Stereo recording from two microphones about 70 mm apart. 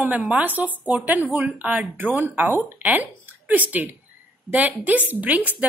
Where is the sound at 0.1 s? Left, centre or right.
Right.